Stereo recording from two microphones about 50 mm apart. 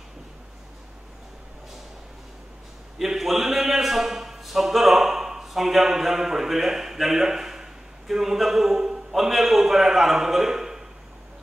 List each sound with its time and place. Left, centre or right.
3.0 s speech: centre